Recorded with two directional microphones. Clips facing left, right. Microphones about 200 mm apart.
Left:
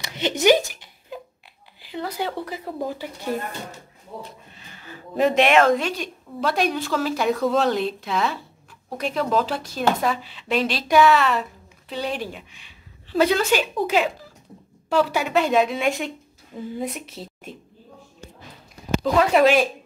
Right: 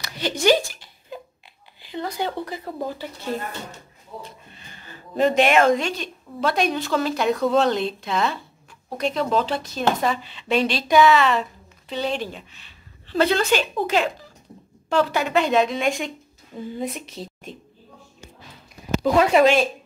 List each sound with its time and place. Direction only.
0.0 s a sound: 20° left (ahead or behind)
1.8 s speech: 5° left (ahead or behind)
4.2 s a woman's voice: 5° left (ahead or behind)
19.3 s speech: 5° left (ahead or behind)